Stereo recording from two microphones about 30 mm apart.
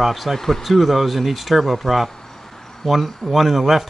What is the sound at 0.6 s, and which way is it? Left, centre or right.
Speech, centre.